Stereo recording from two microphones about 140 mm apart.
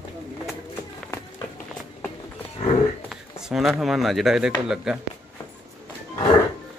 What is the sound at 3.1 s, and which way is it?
Speech, 5° right (ahead or behind).